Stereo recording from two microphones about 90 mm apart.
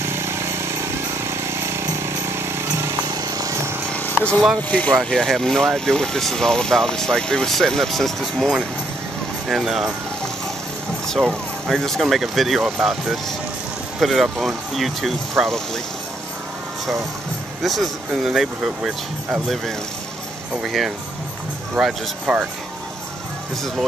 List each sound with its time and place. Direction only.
0.0 s a sound: 30° right (ahead or behind)
3.9 s a sound: 15° left (ahead or behind)
4.6 s speech: 15° left (ahead or behind)
4.9 s speech: 5° left (ahead or behind)
11.1 s speech: centre (ahead or behind)
17.6 s speech: centre (ahead or behind)